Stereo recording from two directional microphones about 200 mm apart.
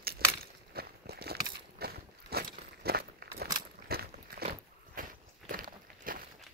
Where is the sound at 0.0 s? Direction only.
50° right (ahead or behind).